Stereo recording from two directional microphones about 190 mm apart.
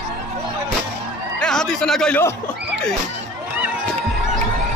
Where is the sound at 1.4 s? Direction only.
5° left (ahead or behind).